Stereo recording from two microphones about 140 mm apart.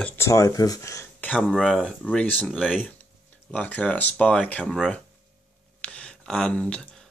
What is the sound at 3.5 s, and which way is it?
Speech, 10° left (ahead or behind).